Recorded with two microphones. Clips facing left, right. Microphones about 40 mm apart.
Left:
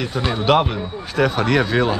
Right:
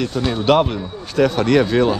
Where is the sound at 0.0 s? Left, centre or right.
Centre.